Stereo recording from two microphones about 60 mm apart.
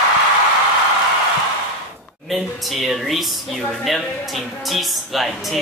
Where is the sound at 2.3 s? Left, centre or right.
Centre.